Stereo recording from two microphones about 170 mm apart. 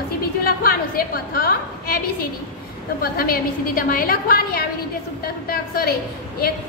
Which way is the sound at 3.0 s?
60° left (ahead or behind).